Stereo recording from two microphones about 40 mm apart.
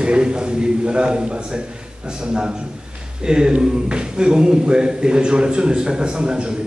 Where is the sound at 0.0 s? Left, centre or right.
Right.